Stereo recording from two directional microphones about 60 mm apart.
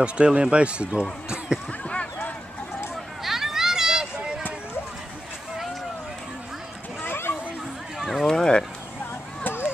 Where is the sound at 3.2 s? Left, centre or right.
Centre.